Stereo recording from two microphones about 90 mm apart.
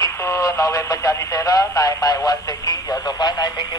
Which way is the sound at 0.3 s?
35° left (ahead or behind).